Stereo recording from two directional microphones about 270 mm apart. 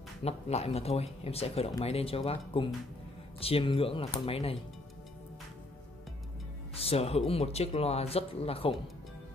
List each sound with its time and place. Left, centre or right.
0.2 s speech: left
6.7 s speech: left